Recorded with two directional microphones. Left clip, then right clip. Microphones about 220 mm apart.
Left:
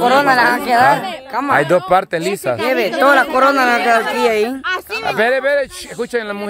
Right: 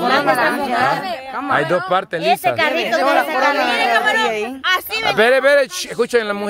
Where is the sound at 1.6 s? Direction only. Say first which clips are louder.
Left 4 dB; 15° left (ahead or behind).